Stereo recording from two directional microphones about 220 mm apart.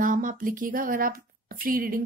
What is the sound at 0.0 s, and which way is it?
A woman's voice, 40° right (ahead or behind).